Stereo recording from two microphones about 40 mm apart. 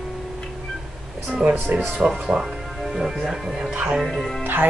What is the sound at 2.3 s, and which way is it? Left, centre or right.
Speech, right.